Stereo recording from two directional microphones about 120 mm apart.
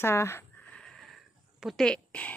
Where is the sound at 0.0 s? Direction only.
20° left (ahead or behind).